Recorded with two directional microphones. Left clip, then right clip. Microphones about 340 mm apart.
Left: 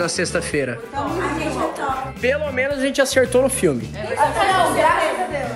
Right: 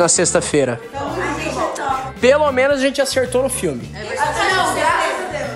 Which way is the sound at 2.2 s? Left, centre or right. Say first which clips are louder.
Right 9 dB; right.